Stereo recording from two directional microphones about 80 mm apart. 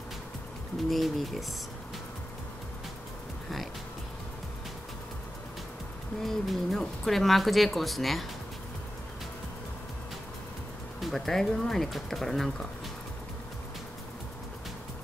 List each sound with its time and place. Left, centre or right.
0.8 s speech: centre
6.2 s speech: centre
11.0 s speech: centre